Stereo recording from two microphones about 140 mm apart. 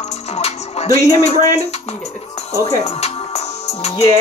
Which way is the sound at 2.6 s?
25° left (ahead or behind).